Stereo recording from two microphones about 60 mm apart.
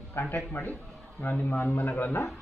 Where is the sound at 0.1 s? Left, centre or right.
Left.